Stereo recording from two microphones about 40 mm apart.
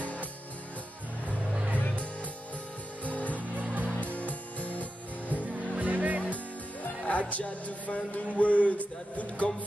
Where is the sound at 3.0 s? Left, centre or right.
Left.